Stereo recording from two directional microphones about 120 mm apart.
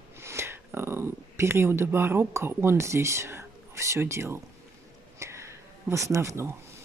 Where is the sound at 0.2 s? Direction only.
20° right (ahead or behind).